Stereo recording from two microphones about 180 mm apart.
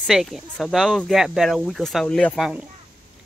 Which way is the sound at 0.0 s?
Centre (ahead or behind).